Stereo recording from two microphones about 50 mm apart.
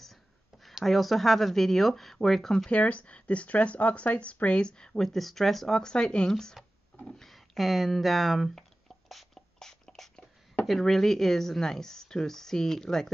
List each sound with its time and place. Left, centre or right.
0.7 s speech: centre
2.7 s speech: left; by 8.5 s centre
9.1 s beatboxing: centre
10.6 s speech: centre